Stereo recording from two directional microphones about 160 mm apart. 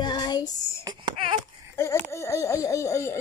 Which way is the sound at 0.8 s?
30° right (ahead or behind).